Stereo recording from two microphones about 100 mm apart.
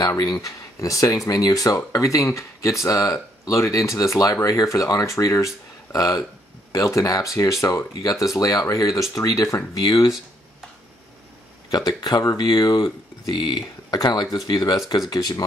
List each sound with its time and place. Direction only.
0.2 s speech: 40° left (ahead or behind)
11.7 s speech: 40° left (ahead or behind)